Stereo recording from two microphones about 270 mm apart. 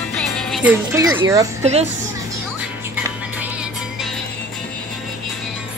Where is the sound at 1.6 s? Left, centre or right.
Right.